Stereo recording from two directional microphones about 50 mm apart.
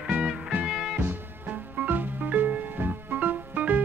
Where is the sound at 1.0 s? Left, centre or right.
Right.